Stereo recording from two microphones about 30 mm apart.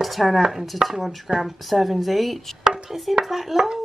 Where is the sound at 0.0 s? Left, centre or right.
Centre.